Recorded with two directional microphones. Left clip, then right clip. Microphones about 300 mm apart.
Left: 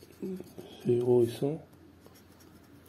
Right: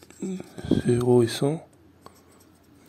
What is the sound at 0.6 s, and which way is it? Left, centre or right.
Speech, right.